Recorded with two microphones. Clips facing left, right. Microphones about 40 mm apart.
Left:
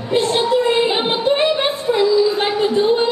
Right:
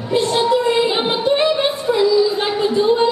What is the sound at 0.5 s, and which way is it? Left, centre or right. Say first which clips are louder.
Child singing: left 1 dB; left.